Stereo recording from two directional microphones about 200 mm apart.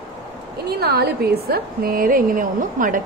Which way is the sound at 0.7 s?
55° right (ahead or behind).